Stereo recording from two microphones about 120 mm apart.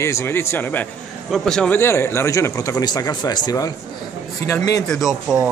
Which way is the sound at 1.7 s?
20° left (ahead or behind).